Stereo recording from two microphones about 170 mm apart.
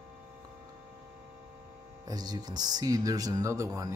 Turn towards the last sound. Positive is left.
turn(degrees=-20)  # may be behind; listen again after turning